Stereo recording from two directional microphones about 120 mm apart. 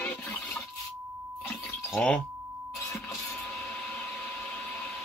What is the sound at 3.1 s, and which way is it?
Vacuum cleaner, 20° left (ahead or behind).